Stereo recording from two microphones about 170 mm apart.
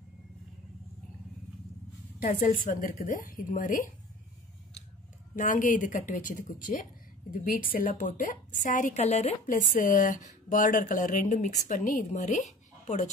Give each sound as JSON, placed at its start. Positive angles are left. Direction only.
{"t": 2.1, "sound": "a woman's voice", "side_deg": 55}
{"t": 5.3, "sound": "a woman's voice", "side_deg": 50}